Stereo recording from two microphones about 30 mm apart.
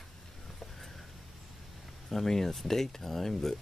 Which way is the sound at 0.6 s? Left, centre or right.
Centre.